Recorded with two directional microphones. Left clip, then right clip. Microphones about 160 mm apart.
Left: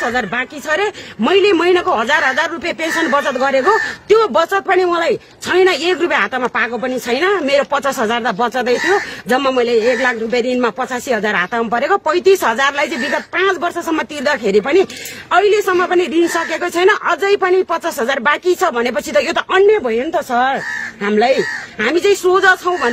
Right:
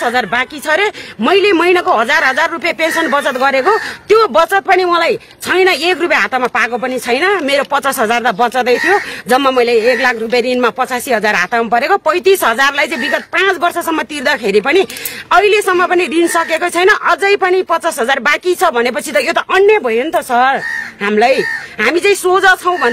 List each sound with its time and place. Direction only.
0.0 s speech: 25° right (ahead or behind)